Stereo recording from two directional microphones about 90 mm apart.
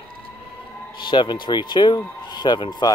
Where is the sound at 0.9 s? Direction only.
60° left (ahead or behind).